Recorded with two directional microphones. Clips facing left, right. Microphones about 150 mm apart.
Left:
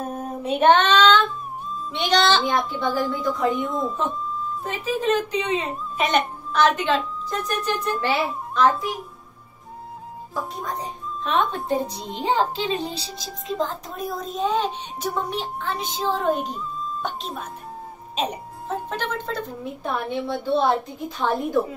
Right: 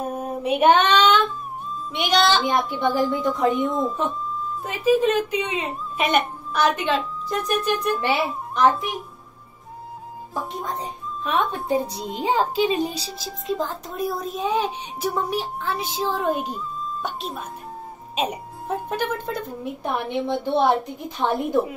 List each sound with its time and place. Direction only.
0.0 s child singing: 10° right (ahead or behind)
1.9 s a woman's voice: 10° right (ahead or behind)
4.8 s a woman's voice: 10° right (ahead or behind)
11.2 s a woman's voice: 10° right (ahead or behind)